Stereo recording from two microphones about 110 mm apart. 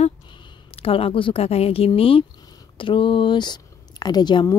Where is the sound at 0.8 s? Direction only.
60° left (ahead or behind); by 4.4 s 40° left (ahead or behind).